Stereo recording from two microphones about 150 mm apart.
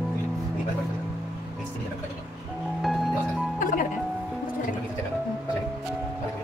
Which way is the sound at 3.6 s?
60° left (ahead or behind).